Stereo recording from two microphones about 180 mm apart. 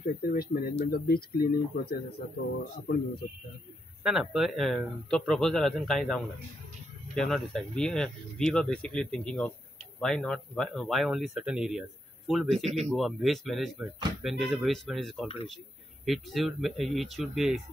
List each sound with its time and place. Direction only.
0.0 s speech: 55° left (ahead or behind)
4.0 s speech: centre (ahead or behind)